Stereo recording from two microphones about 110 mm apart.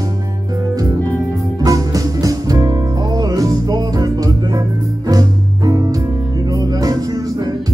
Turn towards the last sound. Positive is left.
turn(degrees=-35)  # may be behind; listen again after turning